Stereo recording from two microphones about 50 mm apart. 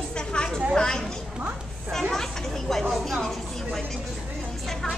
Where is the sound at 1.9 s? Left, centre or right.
Centre.